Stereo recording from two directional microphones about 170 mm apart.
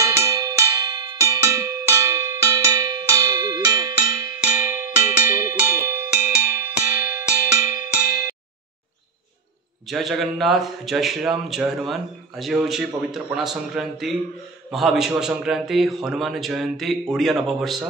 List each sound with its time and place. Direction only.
0.0 s music: 15° right (ahead or behind)
9.8 s a man's voice: centre (ahead or behind)